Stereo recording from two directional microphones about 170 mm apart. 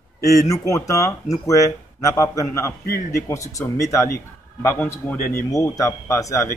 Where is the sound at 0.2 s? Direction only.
20° left (ahead or behind).